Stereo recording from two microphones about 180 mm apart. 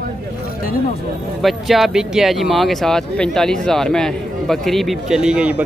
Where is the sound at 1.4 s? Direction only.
Centre (ahead or behind).